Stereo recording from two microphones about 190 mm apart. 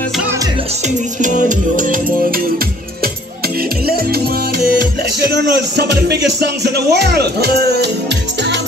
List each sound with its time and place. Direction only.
1.2 s music: 45° right (ahead or behind)
3.8 s music: 55° right (ahead or behind)
5.8 s speech: 60° right (ahead or behind)